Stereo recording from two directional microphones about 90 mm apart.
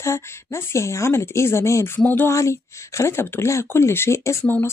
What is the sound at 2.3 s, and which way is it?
A woman's voice, 35° left (ahead or behind).